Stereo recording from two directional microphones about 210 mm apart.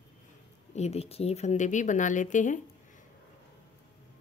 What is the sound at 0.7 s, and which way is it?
Speech, 30° left (ahead or behind).